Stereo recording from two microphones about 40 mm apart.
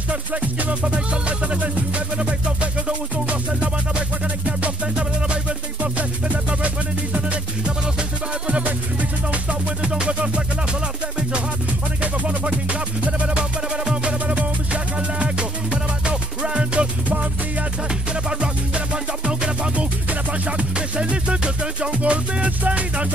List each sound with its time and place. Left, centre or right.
0.1 s music: right
8.5 s music: right
12.0 s music: right
19.2 s music: right
20.1 s music: right
20.7 s music: right